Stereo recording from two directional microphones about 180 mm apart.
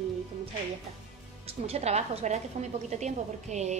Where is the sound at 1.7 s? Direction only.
35° right (ahead or behind).